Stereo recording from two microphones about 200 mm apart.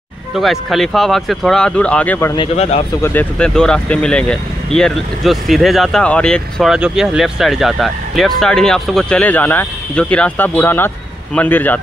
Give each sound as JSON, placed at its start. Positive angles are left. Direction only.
{"t": 0.4, "sound": "speech", "side_deg": 0}
{"t": 2.3, "sound": "speech", "side_deg": 30}
{"t": 3.0, "sound": "a man's voice", "side_deg": 10}